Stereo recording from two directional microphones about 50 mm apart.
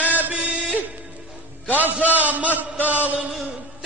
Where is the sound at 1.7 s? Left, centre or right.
Right.